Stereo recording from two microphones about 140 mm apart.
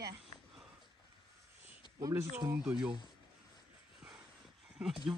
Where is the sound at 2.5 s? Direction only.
5° right (ahead or behind).